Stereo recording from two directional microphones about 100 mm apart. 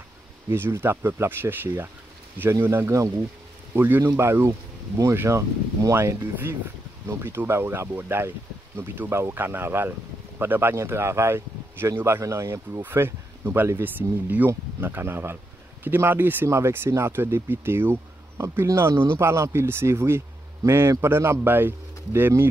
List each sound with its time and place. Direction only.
0.5 s speech: 25° right (ahead or behind)